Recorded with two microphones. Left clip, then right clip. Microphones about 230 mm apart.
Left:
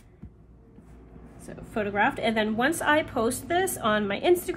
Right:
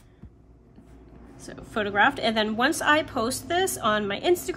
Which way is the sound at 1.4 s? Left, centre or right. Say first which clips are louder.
Right 2 dB; centre.